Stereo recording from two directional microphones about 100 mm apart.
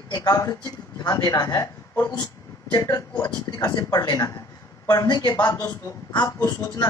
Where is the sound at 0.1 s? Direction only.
35° left (ahead or behind).